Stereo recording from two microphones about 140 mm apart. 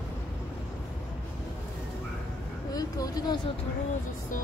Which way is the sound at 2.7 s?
25° left (ahead or behind).